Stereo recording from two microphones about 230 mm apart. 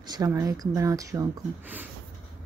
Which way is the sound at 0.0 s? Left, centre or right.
Centre.